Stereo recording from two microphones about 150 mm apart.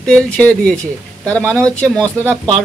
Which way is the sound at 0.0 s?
5° left (ahead or behind).